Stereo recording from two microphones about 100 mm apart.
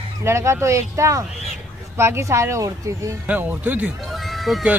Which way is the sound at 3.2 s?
15° right (ahead or behind).